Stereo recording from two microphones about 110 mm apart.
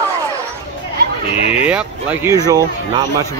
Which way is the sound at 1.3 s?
70° left (ahead or behind).